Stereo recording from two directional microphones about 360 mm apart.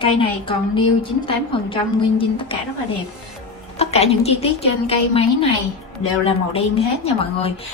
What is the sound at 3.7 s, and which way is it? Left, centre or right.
A woman's voice, centre.